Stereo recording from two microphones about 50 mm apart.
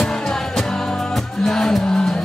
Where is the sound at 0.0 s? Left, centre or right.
Centre.